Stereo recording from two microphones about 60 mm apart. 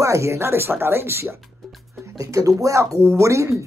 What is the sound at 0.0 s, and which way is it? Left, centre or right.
Speech, right.